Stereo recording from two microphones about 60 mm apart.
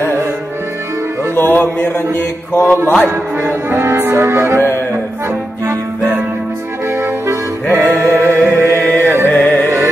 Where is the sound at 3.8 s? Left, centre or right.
Right.